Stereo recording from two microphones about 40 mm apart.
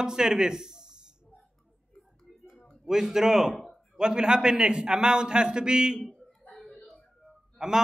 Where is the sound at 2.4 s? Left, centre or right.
Centre.